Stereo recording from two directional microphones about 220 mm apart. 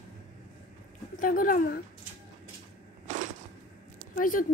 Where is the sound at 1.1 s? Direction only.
40° left (ahead or behind).